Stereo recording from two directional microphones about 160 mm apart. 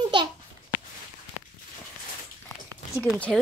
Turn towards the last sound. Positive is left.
turn(degrees=0)  # may be behind; listen again after turning